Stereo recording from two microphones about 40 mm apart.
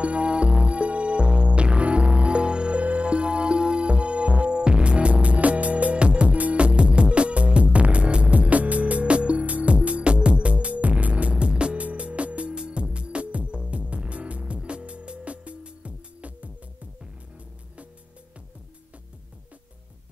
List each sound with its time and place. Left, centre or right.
0.0 s music: right